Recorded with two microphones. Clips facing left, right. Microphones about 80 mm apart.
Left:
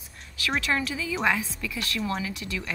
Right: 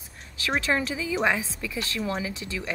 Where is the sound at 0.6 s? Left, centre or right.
Right.